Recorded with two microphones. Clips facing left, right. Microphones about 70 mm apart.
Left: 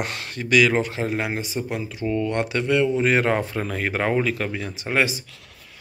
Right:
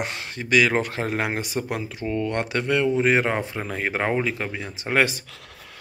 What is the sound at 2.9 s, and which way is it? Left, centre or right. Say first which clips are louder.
Speech: left 1 dB; right.